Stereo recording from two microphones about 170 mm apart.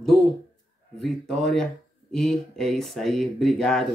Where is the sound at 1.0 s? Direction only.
Centre (ahead or behind).